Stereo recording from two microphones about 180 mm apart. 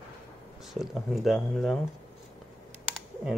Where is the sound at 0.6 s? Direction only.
Centre (ahead or behind).